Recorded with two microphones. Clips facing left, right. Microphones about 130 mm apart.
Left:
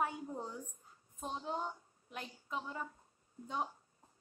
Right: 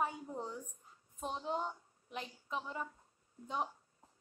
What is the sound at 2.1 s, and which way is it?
A woman's voice, centre (ahead or behind).